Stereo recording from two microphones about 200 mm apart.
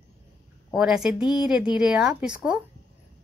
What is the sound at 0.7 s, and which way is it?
A woman's voice, 5° right (ahead or behind).